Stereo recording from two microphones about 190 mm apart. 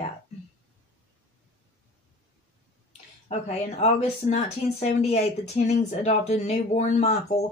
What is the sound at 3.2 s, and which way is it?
Speech, 35° left (ahead or behind).